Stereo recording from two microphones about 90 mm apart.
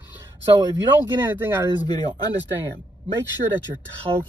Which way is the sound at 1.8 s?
50° left (ahead or behind).